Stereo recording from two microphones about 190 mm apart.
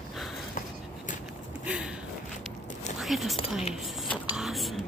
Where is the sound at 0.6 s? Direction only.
40° left (ahead or behind).